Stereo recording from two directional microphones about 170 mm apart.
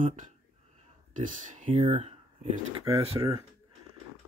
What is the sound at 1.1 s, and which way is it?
Speech, 50° right (ahead or behind).